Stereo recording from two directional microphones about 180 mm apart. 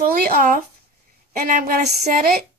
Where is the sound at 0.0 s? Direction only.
55° right (ahead or behind).